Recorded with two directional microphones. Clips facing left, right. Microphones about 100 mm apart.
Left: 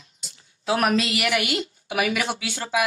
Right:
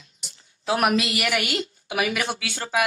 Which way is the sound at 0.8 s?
10° right (ahead or behind).